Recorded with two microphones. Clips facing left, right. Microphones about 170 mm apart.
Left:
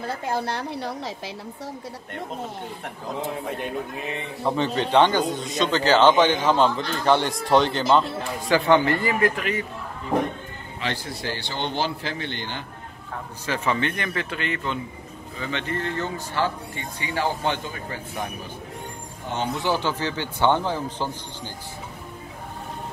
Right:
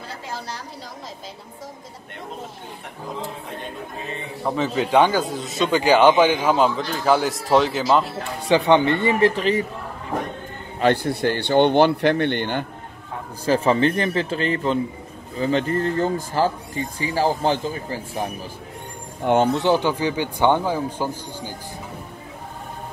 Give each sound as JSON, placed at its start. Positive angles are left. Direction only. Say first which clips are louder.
{"t": 0.0, "sound": "a woman's voice", "louder": "left 6 dB", "side_deg": 55}
{"t": 4.5, "sound": "a man's voice", "louder": "right 1 dB", "side_deg": -5}
{"t": 8.5, "sound": "a man's voice", "louder": "right 3 dB", "side_deg": -20}
{"t": 10.8, "sound": "speech", "louder": "right 11 dB", "side_deg": -55}
{"t": 13.5, "sound": "speech", "louder": "right 7 dB", "side_deg": -35}
{"t": 19.5, "sound": "a man's voice", "louder": "right 5 dB", "side_deg": -20}